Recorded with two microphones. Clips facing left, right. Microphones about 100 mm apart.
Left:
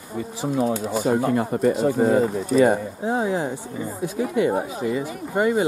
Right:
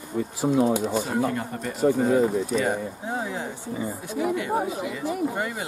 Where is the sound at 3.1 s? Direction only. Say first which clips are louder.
Left 8 dB; 35° left (ahead or behind).